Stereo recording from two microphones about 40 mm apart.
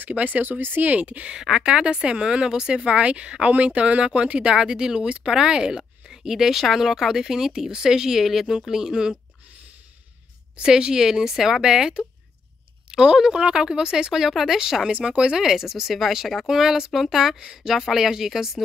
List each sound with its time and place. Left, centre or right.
0.0 s speech: right
0.5 s speech: right
0.8 s speech: right
1.4 s speech: centre
10.6 s speech: right
14.9 s speech: right
15.3 s speech: centre